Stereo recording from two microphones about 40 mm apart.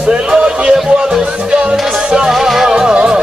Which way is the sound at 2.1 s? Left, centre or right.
Centre.